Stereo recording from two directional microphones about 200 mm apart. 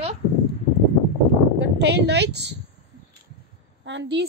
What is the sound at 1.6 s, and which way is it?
Speech, 60° right (ahead or behind).